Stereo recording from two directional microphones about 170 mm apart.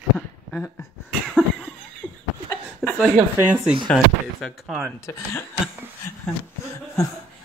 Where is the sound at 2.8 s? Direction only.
Centre (ahead or behind).